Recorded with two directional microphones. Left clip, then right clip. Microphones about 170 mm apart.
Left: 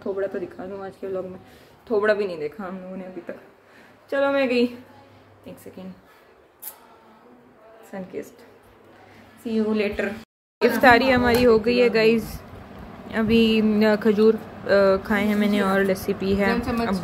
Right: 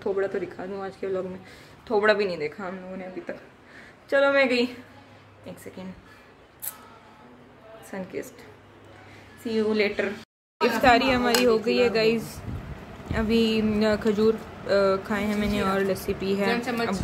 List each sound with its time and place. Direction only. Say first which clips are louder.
0.2 s a woman's voice: even; 10° right (ahead or behind)
7.9 s a woman's voice: left 1 dB; 10° right (ahead or behind)
9.4 s a woman's voice: even; 10° right (ahead or behind)
10.6 s speech: left 4 dB; 20° left (ahead or behind)